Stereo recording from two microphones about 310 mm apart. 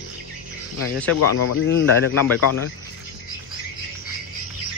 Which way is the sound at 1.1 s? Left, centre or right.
Left.